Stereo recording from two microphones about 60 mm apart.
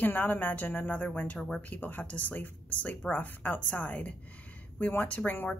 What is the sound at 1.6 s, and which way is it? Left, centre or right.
A woman's voice, left.